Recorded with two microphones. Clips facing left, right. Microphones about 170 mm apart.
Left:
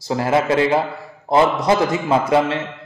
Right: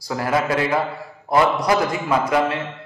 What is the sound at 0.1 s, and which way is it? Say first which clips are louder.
A man's voice: left 3 dB; 25° left (ahead or behind).